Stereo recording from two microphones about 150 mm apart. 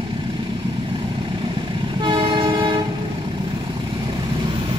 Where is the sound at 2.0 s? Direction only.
35° right (ahead or behind).